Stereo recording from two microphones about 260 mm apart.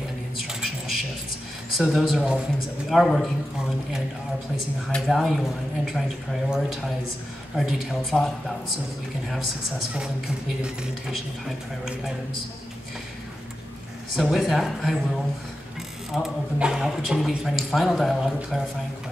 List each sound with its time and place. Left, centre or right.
0.4 s a sound: centre
1.8 s speech: centre
4.9 s speech: centre
10.6 s speech: centre
14.1 s speech: centre
16.1 s speech: centre